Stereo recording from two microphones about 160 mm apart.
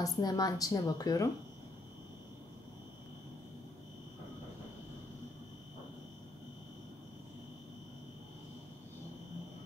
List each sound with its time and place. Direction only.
0.0 s a woman's voice: 25° left (ahead or behind)